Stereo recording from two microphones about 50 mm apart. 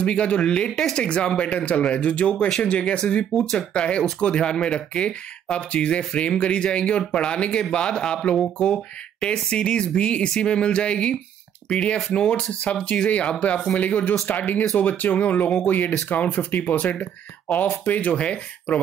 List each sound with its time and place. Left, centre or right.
0.0 s speech: left
17.5 s speech: centre
17.8 s speech: left